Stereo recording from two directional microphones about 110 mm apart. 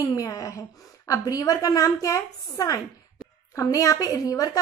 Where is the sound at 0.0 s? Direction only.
30° left (ahead or behind).